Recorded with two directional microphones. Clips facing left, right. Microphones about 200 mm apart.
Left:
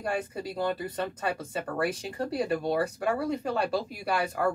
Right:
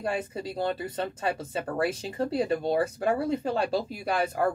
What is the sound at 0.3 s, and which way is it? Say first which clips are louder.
A woman's voice: right 1 dB; 25° right (ahead or behind).